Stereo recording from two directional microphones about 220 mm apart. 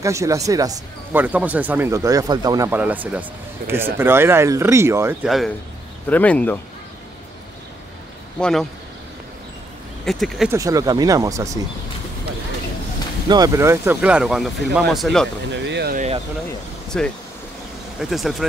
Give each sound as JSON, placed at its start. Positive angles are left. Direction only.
{"t": 0.0, "sound": "speech", "side_deg": -15}
{"t": 6.0, "sound": "speech", "side_deg": 5}
{"t": 8.4, "sound": "speech", "side_deg": 5}
{"t": 10.0, "sound": "speech", "side_deg": 0}
{"t": 10.5, "sound": "speech", "side_deg": -15}
{"t": 13.3, "sound": "speech", "side_deg": -15}
{"t": 15.5, "sound": "speech", "side_deg": -55}
{"t": 16.9, "sound": "speech", "side_deg": 5}